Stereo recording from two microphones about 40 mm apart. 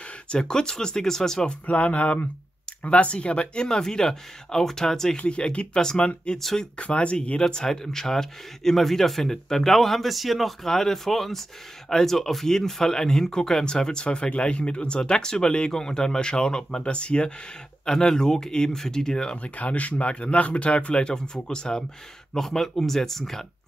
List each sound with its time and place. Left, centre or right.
0.3 s speech: centre
1.7 s speech: left; by 5.1 s centre
5.1 s speech: left
6.3 s speech: centre
6.8 s speech: left
17.8 s speech: centre
19.3 s speech: left
22.4 s speech: centre